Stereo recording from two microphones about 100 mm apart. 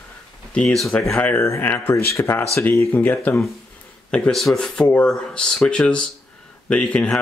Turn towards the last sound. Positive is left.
turn(degrees=10)  # may be behind; listen again after turning